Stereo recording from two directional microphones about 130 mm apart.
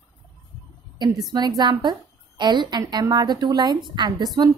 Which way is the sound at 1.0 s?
30° right (ahead or behind).